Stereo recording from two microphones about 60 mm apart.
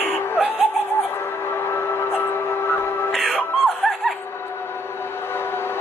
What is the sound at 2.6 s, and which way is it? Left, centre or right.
Music, left.